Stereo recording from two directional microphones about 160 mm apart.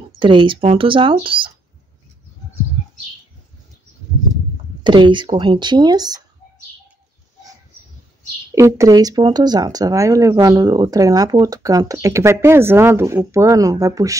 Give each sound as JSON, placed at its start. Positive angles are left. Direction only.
{"t": 0.2, "sound": "speech", "side_deg": -30}
{"t": 4.8, "sound": "speech", "side_deg": -30}
{"t": 8.5, "sound": "speech", "side_deg": -20}